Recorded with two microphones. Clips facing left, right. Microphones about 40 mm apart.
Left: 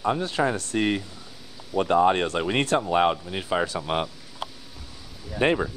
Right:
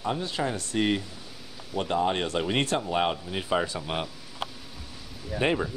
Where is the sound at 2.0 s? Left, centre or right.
Left.